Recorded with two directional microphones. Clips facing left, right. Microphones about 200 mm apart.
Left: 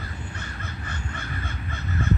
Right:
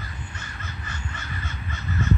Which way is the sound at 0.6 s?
55° left (ahead or behind).